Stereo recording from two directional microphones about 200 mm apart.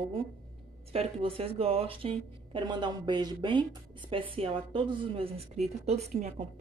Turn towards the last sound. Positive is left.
turn(degrees=-35)  # may be behind; listen again after turning